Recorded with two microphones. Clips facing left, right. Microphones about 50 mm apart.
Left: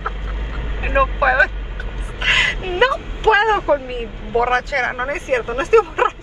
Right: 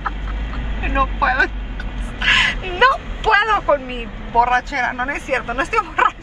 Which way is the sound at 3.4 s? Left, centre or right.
Right.